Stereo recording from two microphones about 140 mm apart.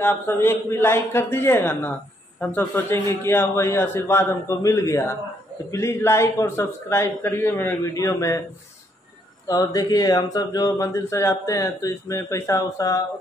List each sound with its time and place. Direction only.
0.0 s speech: 15° left (ahead or behind)
9.5 s speech: 25° left (ahead or behind)